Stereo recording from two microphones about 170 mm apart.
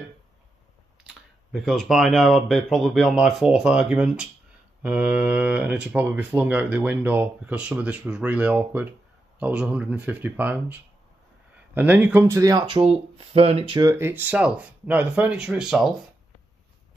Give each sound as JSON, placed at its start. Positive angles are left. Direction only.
{"t": 1.5, "sound": "speech", "side_deg": 0}
{"t": 13.9, "sound": "speech", "side_deg": -10}